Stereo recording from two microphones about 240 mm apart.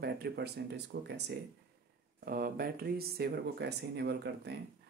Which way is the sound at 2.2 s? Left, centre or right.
Right.